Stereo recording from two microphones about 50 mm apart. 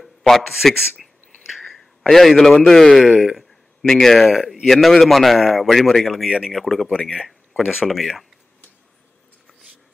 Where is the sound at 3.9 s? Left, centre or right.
Centre.